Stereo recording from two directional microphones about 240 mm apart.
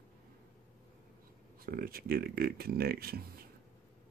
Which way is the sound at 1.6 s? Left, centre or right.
Right.